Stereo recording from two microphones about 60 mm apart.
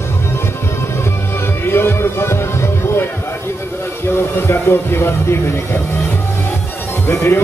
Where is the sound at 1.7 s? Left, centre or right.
Left.